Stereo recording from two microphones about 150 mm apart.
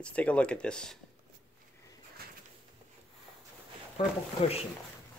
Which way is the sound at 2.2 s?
90° right.